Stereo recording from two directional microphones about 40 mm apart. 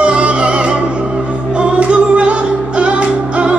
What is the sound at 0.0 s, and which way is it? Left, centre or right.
Music, right.